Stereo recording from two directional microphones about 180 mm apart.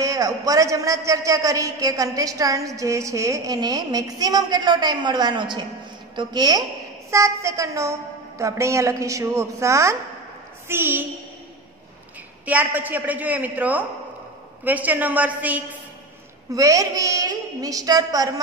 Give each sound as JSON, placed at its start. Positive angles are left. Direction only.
{"t": 0.0, "sound": "a man's voice", "side_deg": -20}
{"t": 12.4, "sound": "a woman's voice", "side_deg": -10}